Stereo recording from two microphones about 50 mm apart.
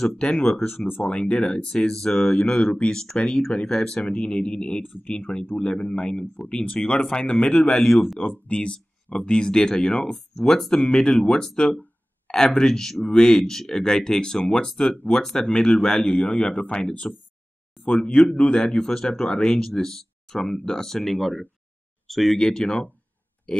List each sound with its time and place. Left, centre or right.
0.2 s speech: left
0.8 s speech: left
1.1 s speech: left
4.8 s speech: left
5.1 s speech: centre
7.9 s speech: centre
8.2 s speech: left; by 22.8 s centre